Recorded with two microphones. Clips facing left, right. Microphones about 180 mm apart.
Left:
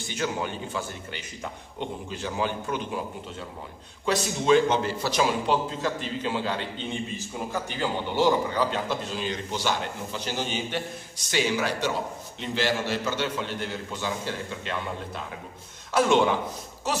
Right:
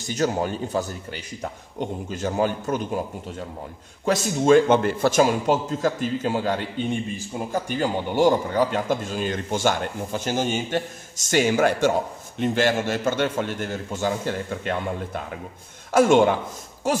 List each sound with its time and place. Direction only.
0.0 s a man's voice: 40° right (ahead or behind)
6.9 s a man's voice: 10° right (ahead or behind)
7.7 s a man's voice: 45° right (ahead or behind)